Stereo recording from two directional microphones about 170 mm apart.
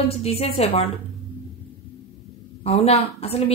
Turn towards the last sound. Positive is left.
turn(degrees=35)  # may be behind; listen again after turning